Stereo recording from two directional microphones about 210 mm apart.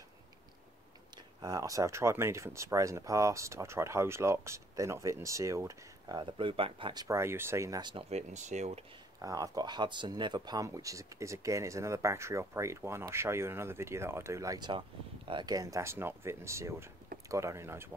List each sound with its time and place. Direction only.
1.4 s speech: 15° right (ahead or behind); by 8.8 s 30° right (ahead or behind)
9.2 s speech: 15° right (ahead or behind)